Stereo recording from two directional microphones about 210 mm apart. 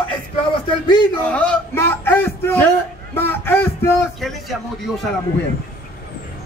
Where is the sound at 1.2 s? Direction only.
5° left (ahead or behind).